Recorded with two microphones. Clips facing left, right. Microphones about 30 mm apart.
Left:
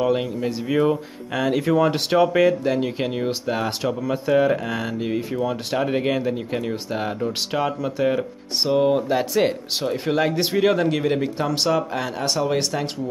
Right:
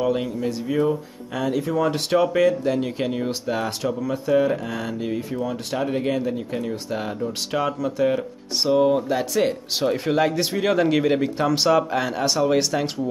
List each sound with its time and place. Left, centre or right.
0.0 s speech: centre
1.3 s speech: left
1.8 s speech: left
3.8 s speech: left
9.8 s speech: centre
10.8 s speech: centre